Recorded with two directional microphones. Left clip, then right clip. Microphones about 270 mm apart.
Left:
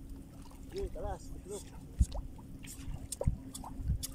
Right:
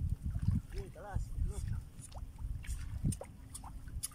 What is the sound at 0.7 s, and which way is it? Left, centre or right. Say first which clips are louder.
Boat: left 8 dB; centre.